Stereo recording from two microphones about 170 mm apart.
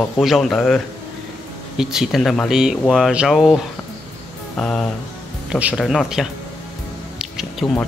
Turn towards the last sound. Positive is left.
turn(degrees=0)  # may be behind; listen again after turning